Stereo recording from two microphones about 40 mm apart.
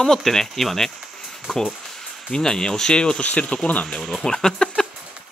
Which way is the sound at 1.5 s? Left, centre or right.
Centre.